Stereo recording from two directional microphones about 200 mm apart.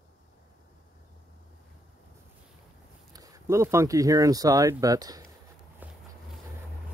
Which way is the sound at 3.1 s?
15° right (ahead or behind).